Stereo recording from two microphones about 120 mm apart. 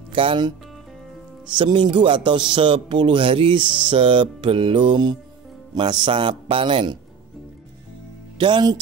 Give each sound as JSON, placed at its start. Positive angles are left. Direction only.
{"t": 0.1, "sound": "speech", "side_deg": -45}
{"t": 8.4, "sound": "speech", "side_deg": -40}